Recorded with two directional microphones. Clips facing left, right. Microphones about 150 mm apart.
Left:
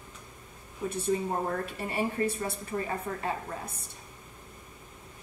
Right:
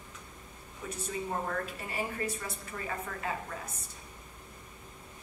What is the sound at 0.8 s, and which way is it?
A woman's voice, 30° left (ahead or behind).